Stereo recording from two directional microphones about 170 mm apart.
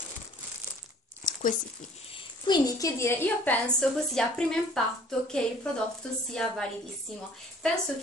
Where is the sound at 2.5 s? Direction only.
20° left (ahead or behind); by 4.8 s 5° left (ahead or behind).